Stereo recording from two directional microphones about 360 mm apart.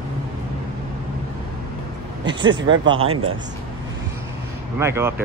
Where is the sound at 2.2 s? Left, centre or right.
Centre.